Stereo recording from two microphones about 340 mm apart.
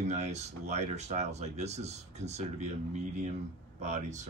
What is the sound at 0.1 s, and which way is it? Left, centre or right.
Speech, centre.